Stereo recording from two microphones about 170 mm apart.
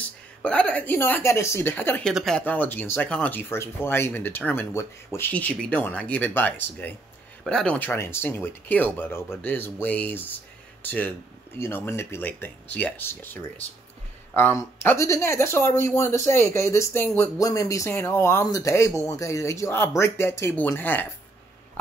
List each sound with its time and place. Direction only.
0.4 s speech: 5° left (ahead or behind)